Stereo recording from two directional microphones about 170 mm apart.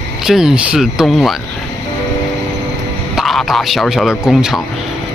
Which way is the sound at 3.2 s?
Centre (ahead or behind).